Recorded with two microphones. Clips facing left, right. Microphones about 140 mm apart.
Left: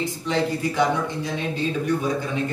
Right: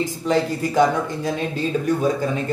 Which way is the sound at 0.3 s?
45° right (ahead or behind).